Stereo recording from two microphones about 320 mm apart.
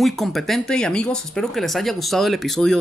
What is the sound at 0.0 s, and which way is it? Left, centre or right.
Speech, centre.